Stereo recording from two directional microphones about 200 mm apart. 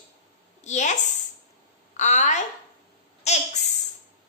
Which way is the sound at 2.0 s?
35° left (ahead or behind).